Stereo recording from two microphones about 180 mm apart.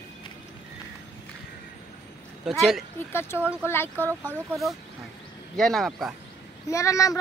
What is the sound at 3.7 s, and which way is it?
Speech, 10° left (ahead or behind).